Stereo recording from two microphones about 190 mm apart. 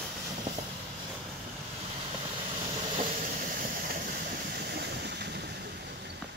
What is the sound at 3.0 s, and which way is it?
Train, 40° right (ahead or behind).